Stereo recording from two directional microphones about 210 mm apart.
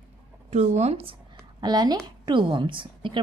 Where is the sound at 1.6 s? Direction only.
20° right (ahead or behind).